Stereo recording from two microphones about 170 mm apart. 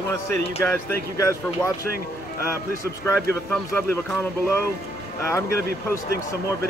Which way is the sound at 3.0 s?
10° left (ahead or behind).